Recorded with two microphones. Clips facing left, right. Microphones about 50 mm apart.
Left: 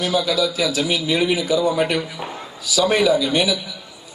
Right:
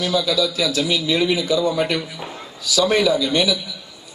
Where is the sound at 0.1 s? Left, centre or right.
Left.